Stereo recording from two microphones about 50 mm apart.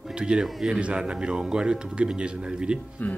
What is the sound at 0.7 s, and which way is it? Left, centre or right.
A man's voice, right.